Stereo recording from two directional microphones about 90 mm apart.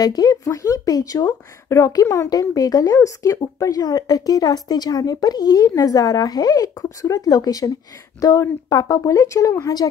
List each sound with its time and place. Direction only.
0.0 s speech: 45° left (ahead or behind)